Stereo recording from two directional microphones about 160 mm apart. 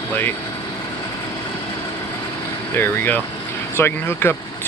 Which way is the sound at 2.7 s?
15° left (ahead or behind).